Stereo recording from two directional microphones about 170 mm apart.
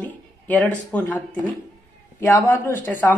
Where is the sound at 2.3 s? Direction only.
15° left (ahead or behind).